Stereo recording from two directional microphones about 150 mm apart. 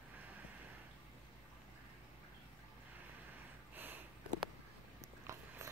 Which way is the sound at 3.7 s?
15° right (ahead or behind).